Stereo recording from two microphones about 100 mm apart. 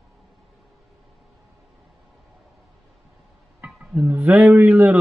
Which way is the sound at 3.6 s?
15° right (ahead or behind).